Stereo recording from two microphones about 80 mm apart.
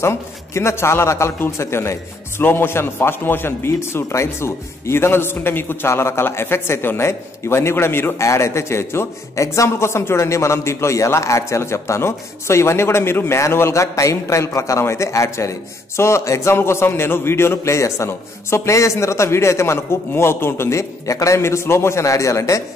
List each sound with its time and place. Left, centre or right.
0.0 s a man's voice: left